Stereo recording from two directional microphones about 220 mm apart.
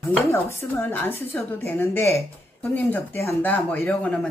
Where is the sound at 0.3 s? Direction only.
10° left (ahead or behind).